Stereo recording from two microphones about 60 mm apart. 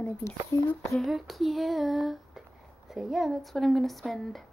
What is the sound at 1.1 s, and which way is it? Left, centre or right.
Speech, centre.